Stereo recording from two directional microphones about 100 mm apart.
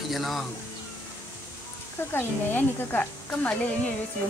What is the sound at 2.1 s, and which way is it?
Speech, 20° left (ahead or behind).